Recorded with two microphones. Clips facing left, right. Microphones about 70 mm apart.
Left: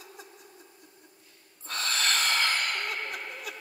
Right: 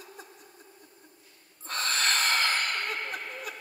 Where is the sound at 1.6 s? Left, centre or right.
Right.